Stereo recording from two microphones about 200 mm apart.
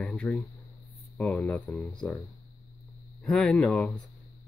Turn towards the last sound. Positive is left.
turn(degrees=5)  # may be behind; listen again after turning